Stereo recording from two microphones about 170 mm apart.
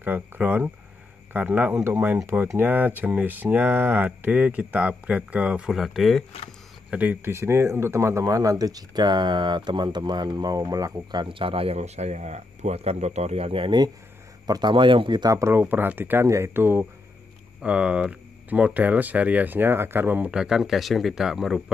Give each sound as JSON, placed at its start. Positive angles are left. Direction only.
{"t": 0.0, "sound": "speech", "side_deg": -10}